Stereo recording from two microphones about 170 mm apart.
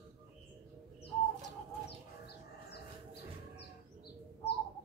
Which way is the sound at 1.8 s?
75° left (ahead or behind).